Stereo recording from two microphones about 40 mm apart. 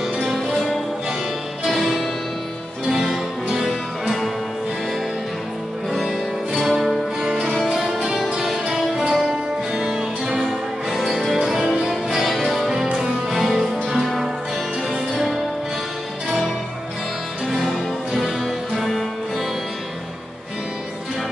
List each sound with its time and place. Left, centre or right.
0.3 s music: centre
1.7 s music: centre
6.6 s music: centre
11.6 s music: centre
12.2 s music: centre
16.3 s music: centre